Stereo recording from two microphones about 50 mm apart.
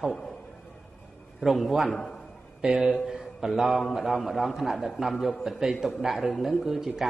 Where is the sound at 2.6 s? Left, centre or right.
Centre.